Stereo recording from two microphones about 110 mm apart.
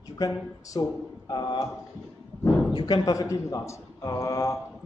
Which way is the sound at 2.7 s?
40° left (ahead or behind).